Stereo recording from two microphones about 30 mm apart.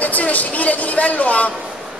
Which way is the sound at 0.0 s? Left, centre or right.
Left.